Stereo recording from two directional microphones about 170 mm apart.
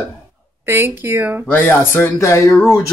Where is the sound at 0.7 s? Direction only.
15° right (ahead or behind).